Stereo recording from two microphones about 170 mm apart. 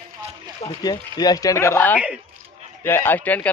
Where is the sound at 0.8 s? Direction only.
25° left (ahead or behind).